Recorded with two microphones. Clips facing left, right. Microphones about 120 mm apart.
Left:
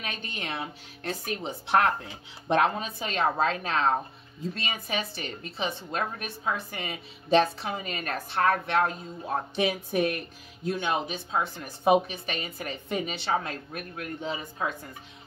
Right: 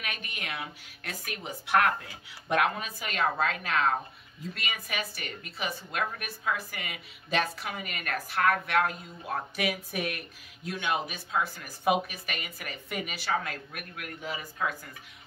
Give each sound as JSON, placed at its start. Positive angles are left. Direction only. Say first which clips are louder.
{"t": 0.0, "sound": "speech", "louder": "left 3 dB", "side_deg": 30}